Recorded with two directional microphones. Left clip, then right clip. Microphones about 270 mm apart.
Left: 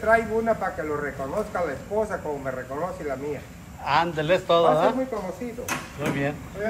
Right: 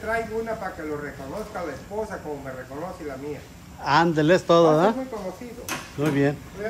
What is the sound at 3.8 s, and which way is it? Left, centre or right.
A man's voice, right.